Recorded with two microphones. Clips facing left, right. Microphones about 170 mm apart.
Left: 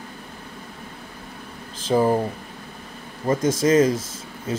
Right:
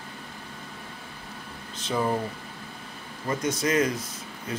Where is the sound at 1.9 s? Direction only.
35° left (ahead or behind).